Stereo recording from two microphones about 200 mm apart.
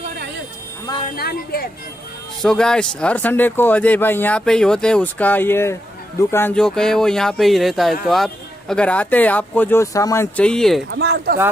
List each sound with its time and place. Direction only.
1.1 s speech: 50° left (ahead or behind)
2.4 s speech: 5° left (ahead or behind)
10.9 s speech: 60° right (ahead or behind)